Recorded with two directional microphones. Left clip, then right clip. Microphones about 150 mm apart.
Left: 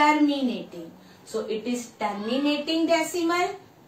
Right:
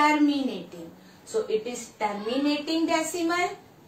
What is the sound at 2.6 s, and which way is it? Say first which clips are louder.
Speech: left 3 dB; 15° right (ahead or behind).